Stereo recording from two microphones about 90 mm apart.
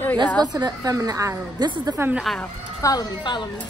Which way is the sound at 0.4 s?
50° right (ahead or behind).